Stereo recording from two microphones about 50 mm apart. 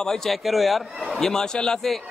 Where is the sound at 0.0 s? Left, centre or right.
Centre.